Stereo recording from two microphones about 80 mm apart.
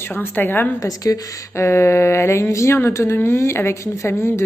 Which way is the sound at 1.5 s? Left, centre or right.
Left.